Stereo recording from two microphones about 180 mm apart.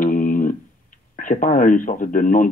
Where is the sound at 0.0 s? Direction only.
50° left (ahead or behind).